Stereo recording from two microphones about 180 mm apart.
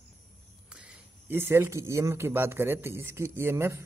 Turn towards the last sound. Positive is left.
turn(degrees=-15)  # may be behind; listen again after turning